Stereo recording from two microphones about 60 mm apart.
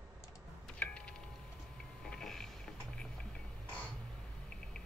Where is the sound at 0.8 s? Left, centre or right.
Left.